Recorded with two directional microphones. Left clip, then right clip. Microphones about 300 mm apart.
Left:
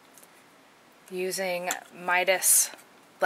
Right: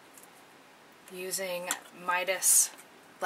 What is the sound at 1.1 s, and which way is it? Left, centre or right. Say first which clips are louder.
Speech: left 6 dB; centre.